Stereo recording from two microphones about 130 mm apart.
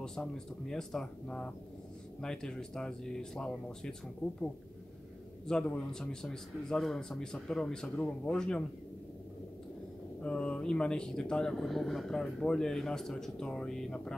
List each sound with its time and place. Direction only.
0.0 s speech: 5° left (ahead or behind)
5.5 s speech: 5° left (ahead or behind)
10.2 s speech: 10° left (ahead or behind)